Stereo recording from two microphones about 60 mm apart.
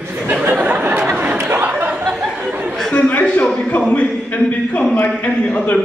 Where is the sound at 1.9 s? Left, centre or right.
Centre.